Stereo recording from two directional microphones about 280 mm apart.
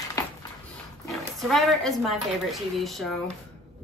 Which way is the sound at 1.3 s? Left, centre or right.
Centre.